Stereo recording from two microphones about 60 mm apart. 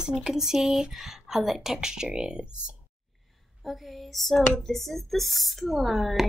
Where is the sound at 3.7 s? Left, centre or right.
Centre.